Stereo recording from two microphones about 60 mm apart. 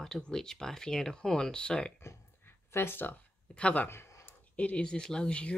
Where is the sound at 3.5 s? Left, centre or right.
Left.